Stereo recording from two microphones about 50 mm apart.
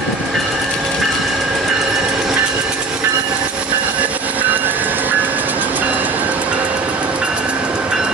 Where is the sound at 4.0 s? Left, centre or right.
Right.